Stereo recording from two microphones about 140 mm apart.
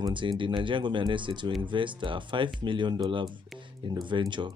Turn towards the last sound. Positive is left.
turn(degrees=-35)  # may be behind; listen again after turning